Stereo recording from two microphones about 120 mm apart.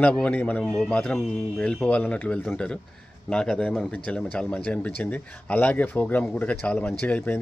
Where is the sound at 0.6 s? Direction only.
Centre (ahead or behind).